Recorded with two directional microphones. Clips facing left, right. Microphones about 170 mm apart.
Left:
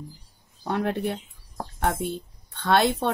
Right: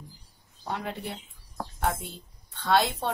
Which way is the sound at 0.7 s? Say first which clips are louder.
Left 8 dB; 60° left (ahead or behind).